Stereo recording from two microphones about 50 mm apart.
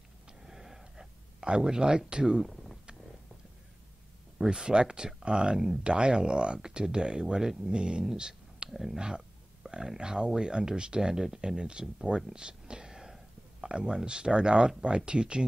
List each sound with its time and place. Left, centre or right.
0.5 s a sound: centre
1.5 s speech: centre
4.4 s speech: centre